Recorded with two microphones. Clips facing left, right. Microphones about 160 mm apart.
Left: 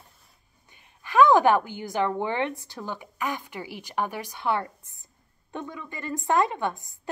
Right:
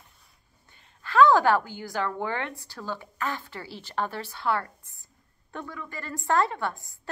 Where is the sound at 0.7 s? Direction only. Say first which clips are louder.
Even; 15° left (ahead or behind).